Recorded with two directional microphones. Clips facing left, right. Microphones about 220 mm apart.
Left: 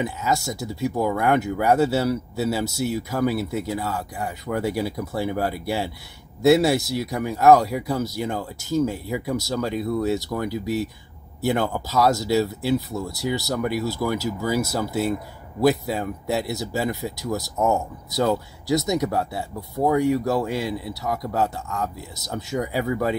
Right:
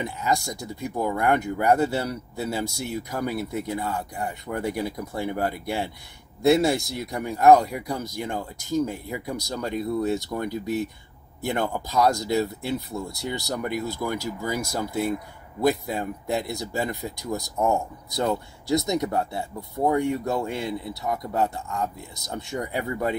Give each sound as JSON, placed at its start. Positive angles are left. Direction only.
{"t": 0.0, "sound": "speech", "side_deg": 5}
{"t": 22.3, "sound": "speech", "side_deg": 0}